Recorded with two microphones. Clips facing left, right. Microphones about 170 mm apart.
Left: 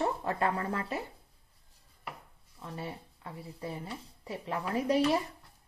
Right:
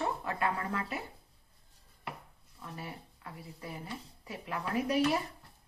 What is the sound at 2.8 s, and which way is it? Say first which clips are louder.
Speech: left 5 dB; 30° left (ahead or behind).